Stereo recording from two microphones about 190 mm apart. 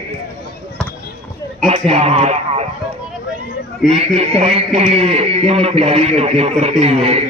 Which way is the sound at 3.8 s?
35° right (ahead or behind).